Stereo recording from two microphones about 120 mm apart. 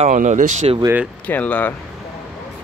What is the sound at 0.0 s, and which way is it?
Speech, 90° right.